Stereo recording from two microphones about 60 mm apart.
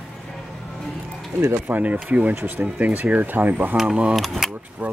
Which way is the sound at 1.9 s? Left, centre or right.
Right.